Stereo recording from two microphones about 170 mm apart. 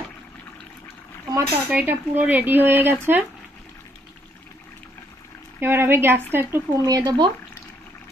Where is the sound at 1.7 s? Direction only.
10° right (ahead or behind).